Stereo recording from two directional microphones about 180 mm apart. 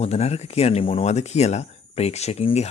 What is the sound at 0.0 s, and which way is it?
Speech, 35° left (ahead or behind).